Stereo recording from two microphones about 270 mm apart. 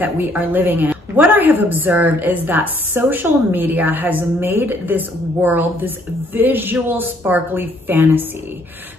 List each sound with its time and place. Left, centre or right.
0.0 s a woman's voice: centre